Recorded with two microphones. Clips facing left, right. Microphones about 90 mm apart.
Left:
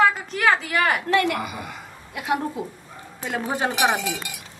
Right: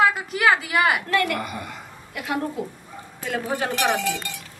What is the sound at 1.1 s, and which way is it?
Speech, 25° left (ahead or behind).